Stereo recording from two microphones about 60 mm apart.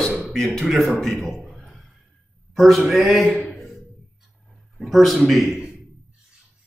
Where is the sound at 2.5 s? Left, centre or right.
Centre.